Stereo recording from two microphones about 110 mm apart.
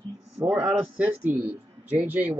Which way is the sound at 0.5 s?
5° right (ahead or behind).